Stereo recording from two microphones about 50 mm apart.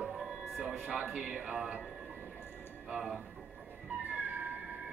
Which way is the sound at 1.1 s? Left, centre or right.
Centre.